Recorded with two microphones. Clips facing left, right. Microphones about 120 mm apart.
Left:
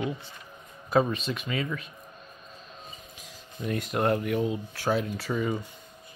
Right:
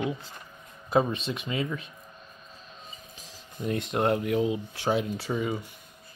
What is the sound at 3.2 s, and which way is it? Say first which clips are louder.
Speech: right 1 dB; 30° right (ahead or behind).